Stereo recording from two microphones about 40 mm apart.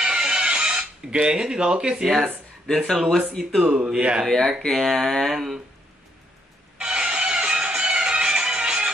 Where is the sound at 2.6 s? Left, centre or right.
Centre.